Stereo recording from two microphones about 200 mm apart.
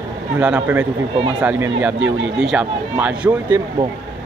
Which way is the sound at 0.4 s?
5° right (ahead or behind).